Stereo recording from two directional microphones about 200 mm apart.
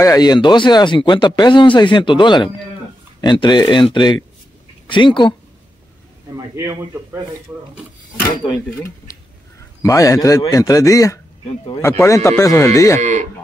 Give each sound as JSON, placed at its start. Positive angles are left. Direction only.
{"t": 0.0, "sound": "speech", "side_deg": 20}
{"t": 6.3, "sound": "a man's voice", "side_deg": -15}
{"t": 9.8, "sound": "speech", "side_deg": 15}
{"t": 13.0, "sound": "speech", "side_deg": -35}